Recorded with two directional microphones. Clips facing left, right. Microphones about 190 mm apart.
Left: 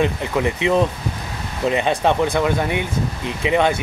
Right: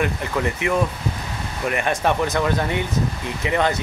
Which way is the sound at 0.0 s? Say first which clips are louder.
Left 3 dB; 20° left (ahead or behind).